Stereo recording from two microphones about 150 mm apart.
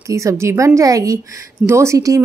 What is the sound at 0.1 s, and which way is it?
Speech, 20° right (ahead or behind).